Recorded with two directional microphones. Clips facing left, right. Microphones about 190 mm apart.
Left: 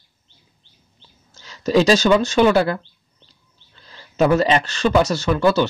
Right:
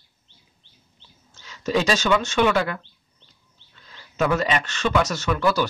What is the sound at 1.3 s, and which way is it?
Speech, 35° left (ahead or behind).